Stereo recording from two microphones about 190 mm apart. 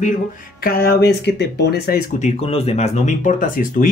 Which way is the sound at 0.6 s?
50° left (ahead or behind).